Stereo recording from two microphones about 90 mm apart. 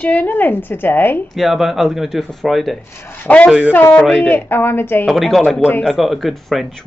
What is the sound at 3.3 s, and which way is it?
Speech, 15° left (ahead or behind).